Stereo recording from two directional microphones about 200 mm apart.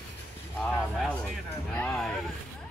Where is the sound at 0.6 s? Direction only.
5° left (ahead or behind).